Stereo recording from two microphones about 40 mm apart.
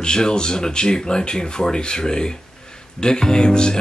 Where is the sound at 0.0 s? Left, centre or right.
Centre.